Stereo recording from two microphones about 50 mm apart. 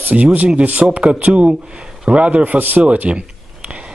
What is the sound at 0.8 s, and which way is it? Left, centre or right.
A man's voice, centre.